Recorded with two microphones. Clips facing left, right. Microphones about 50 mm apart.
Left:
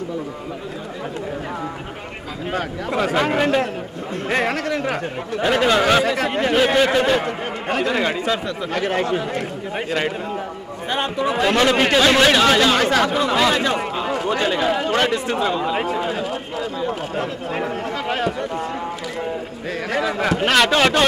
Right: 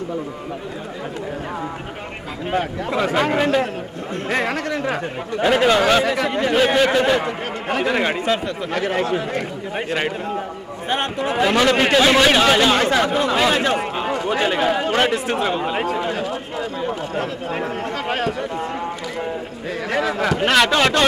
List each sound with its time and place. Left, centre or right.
2.5 s speech: centre
3.1 s speech: centre
5.4 s speech: centre
7.7 s speech: right
8.7 s speech: centre
11.1 s speech: centre
11.4 s speech: centre
17.1 s speech: centre
20.3 s speech: centre